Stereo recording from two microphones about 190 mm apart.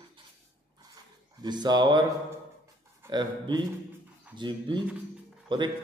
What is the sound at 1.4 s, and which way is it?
Music, 20° right (ahead or behind).